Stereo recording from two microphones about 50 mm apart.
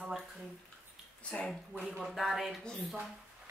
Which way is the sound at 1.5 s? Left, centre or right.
Centre.